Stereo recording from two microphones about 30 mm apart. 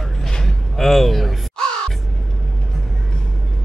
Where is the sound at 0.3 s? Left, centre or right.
Centre.